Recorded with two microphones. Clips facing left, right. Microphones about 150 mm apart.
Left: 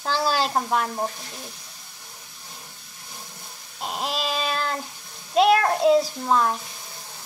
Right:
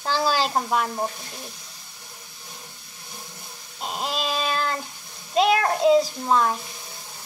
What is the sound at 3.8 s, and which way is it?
Owl, 5° left (ahead or behind).